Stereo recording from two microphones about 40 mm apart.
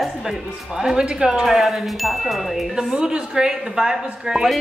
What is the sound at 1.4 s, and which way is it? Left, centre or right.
Speech, centre.